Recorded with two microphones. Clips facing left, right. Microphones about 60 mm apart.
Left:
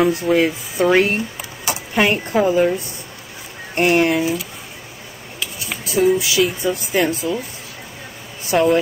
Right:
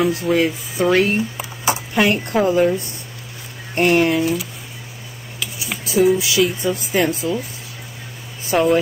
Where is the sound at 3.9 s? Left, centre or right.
Centre.